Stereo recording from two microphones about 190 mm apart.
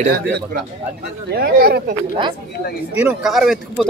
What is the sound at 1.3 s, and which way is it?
Speech, 55° right (ahead or behind).